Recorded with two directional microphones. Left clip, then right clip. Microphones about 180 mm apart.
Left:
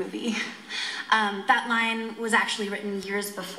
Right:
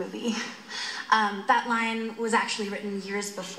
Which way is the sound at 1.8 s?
50° left (ahead or behind).